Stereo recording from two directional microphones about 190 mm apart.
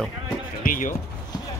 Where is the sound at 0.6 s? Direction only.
45° left (ahead or behind).